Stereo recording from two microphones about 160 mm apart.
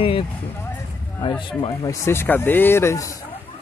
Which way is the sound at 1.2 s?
30° left (ahead or behind).